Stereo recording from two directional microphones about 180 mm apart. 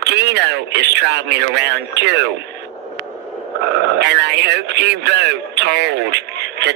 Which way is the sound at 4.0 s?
70° right (ahead or behind).